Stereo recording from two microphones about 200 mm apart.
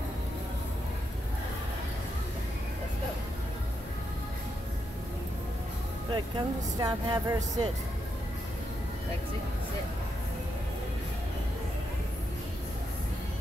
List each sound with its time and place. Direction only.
6.1 s speech: 20° right (ahead or behind)